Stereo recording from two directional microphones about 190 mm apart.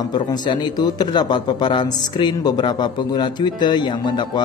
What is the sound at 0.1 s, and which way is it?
A man's voice, 25° left (ahead or behind).